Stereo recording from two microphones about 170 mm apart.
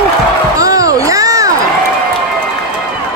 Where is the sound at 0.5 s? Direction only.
20° right (ahead or behind).